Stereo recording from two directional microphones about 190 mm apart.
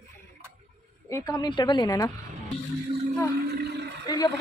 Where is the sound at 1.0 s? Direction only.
15° left (ahead or behind).